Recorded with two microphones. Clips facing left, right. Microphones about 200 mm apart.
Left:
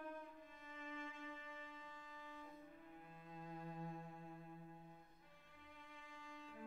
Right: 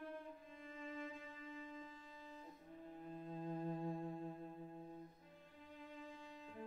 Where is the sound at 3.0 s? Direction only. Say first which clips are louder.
Right 11 dB; 35° right (ahead or behind).